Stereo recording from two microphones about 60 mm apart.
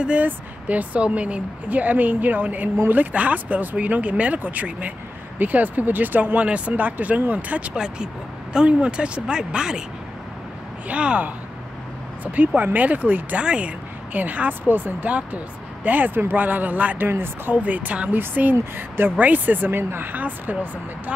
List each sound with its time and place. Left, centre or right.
0.0 s speech: right
10.9 s speech: centre
17.1 s speech: right
17.6 s speech: right